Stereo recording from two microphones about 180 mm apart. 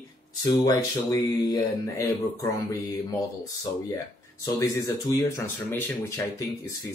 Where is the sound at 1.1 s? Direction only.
20° left (ahead or behind).